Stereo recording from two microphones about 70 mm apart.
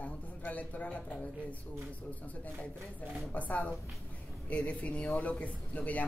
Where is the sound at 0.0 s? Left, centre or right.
Left.